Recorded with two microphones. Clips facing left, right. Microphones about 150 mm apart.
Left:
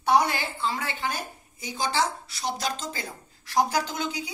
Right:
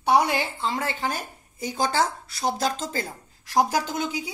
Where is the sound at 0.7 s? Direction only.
40° right (ahead or behind).